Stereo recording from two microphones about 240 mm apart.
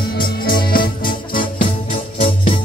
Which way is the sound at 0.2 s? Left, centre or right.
Left.